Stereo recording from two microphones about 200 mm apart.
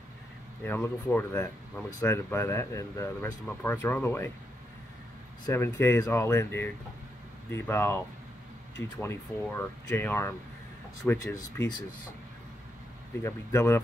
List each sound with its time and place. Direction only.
0.7 s speech: 10° left (ahead or behind)
5.4 s speech: 15° left (ahead or behind)
11.3 s speech: 20° left (ahead or behind)
13.2 s speech: 15° left (ahead or behind)